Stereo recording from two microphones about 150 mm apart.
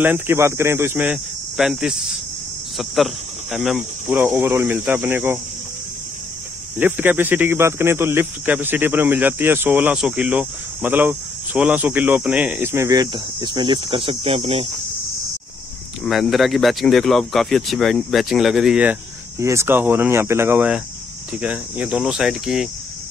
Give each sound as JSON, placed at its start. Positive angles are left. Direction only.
{"t": 0.0, "sound": "speech", "side_deg": -15}
{"t": 3.5, "sound": "speech", "side_deg": -5}
{"t": 6.8, "sound": "speech", "side_deg": -10}
{"t": 16.1, "sound": "speech", "side_deg": 0}
{"t": 19.4, "sound": "speech", "side_deg": -20}